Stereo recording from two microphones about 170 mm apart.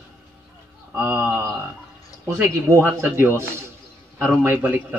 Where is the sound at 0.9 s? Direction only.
15° right (ahead or behind).